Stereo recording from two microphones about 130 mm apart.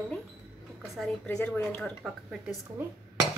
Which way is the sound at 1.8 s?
Centre (ahead or behind).